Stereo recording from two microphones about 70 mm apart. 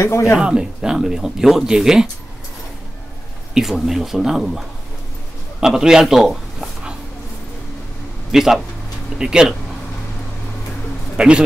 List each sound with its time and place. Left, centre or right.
0.0 s speech: left
0.4 s speech: centre
3.5 s a man's voice: centre
8.3 s speech: centre
11.1 s speech: centre